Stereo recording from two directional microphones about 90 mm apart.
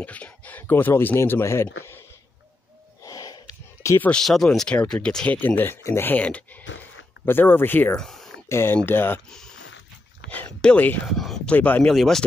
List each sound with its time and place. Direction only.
0.0 s speech: 15° left (ahead or behind)
3.0 s a sound: 40° left (ahead or behind)
4.2 s speech: 5° left (ahead or behind); by 7.9 s 20° left (ahead or behind)
7.9 s speech: 5° left (ahead or behind)
8.5 s speech: 30° left (ahead or behind)
10.3 s speech: 15° left (ahead or behind)
11.1 s speech: centre (ahead or behind)
11.5 s speech: 20° left (ahead or behind)
11.8 s speech: centre (ahead or behind)